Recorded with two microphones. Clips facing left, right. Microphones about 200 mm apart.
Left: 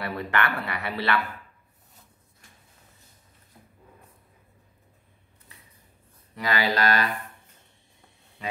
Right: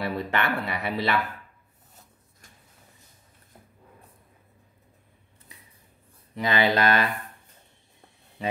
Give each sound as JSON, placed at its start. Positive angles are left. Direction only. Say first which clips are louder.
{"t": 0.0, "sound": "speech", "louder": "right 1 dB", "side_deg": -20}
{"t": 6.3, "sound": "speech", "louder": "right 3 dB", "side_deg": -20}